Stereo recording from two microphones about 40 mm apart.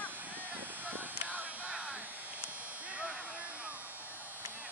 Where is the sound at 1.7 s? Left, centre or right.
Right.